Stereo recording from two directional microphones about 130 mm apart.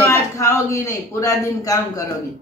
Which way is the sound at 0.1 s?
20° left (ahead or behind).